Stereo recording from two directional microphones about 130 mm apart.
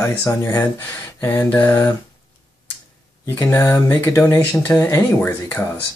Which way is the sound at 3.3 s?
20° left (ahead or behind).